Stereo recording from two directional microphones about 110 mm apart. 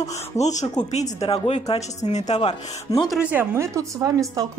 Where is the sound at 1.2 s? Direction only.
60° left (ahead or behind); by 2.5 s 90° left.